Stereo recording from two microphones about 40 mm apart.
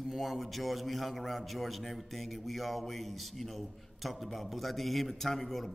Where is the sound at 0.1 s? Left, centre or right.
Centre.